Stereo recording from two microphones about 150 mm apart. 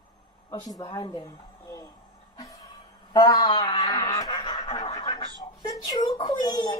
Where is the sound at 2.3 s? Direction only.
25° left (ahead or behind).